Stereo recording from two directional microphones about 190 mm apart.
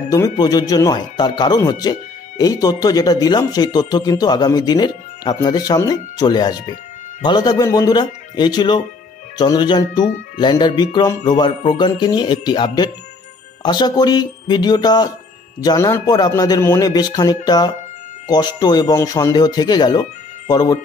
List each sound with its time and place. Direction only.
0.1 s speech: 20° left (ahead or behind)